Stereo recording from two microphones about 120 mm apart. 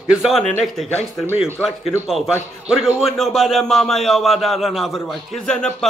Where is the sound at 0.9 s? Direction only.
20° left (ahead or behind).